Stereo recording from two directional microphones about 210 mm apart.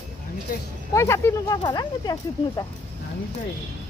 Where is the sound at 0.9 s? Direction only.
15° left (ahead or behind).